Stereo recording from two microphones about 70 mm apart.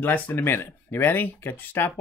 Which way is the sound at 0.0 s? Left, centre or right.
Left.